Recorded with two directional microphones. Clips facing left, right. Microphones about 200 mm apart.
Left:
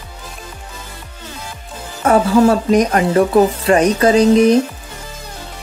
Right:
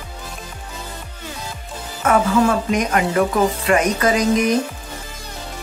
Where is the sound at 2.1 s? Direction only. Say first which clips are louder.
Left 5 dB; 35° left (ahead or behind).